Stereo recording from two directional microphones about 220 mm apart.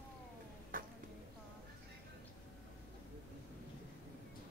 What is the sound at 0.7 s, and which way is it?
Arrow, 40° right (ahead or behind).